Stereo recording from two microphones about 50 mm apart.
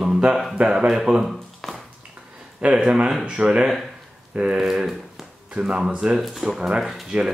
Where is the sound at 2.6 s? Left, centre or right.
Right.